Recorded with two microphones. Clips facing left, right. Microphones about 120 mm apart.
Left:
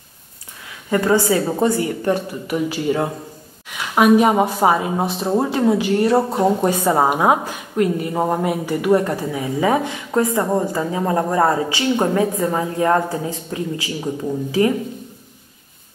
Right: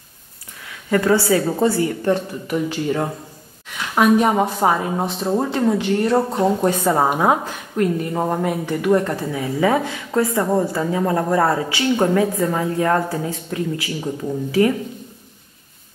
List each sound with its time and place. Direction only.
0.8 s speech: 20° left (ahead or behind)